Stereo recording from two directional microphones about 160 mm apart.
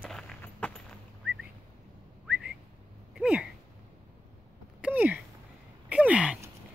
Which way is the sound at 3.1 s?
5° right (ahead or behind).